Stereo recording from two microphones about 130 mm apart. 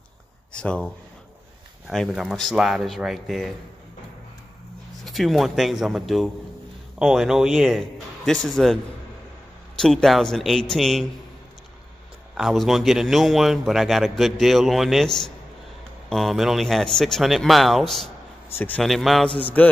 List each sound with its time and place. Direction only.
0.6 s mantra: 10° left (ahead or behind)
1.9 s a man's voice: centre (ahead or behind)
5.0 s a man's voice: centre (ahead or behind)
9.8 s a man's voice: 5° left (ahead or behind)
12.4 s a man's voice: centre (ahead or behind)
18.5 s mantra: 15° left (ahead or behind)
18.8 s a man's voice: centre (ahead or behind)
19.3 s mantra: 10° left (ahead or behind)